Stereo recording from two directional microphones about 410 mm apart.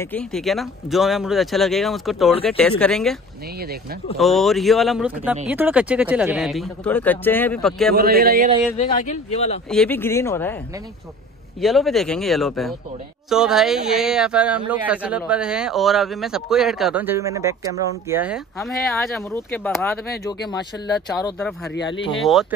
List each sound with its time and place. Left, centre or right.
0.0 s speech: centre
4.2 s speech: centre
7.9 s a man's voice: right
8.7 s speech: centre
9.7 s speech: centre
11.6 s speech: centre
21.7 s speech: left
22.2 s speech: centre